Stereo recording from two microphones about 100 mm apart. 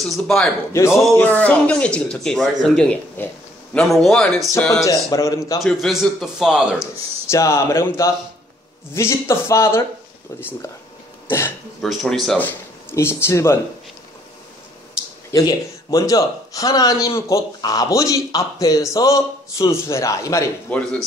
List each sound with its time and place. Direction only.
0.0 s a man's voice: 5° left (ahead or behind)
0.7 s speech: 30° left (ahead or behind)
1.3 s a man's voice: 15° left (ahead or behind)
4.8 s speech: 35° left (ahead or behind)
5.6 s a man's voice: centre (ahead or behind)
7.2 s speech: 30° left (ahead or behind)
11.2 s speech: 20° left (ahead or behind)
11.8 s a man's voice: centre (ahead or behind)
12.9 s speech: 25° left (ahead or behind)
15.3 s speech: 35° left (ahead or behind)
20.7 s speech: 15° left (ahead or behind)